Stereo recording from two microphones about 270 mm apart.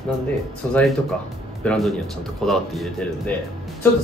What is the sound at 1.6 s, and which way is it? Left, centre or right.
Speech, centre.